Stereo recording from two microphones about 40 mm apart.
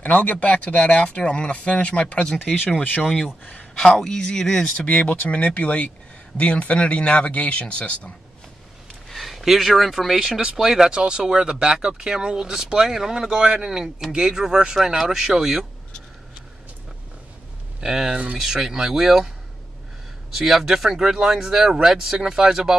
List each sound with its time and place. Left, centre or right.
0.0 s speech: left
3.9 s speech: centre
4.7 s speech: left
9.1 s speech: centre
17.7 s speech: centre
18.1 s speech: right
18.4 s speech: centre
20.3 s speech: centre